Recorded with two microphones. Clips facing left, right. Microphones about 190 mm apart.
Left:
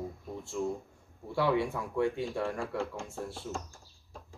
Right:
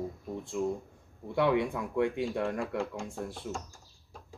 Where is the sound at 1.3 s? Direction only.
20° right (ahead or behind).